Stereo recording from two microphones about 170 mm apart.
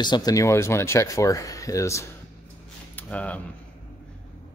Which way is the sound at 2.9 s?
10° left (ahead or behind).